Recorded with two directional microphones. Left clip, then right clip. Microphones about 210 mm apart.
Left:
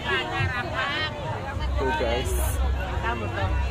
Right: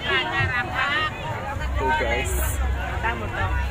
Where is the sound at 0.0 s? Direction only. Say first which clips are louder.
Right 4 dB; 50° left (ahead or behind).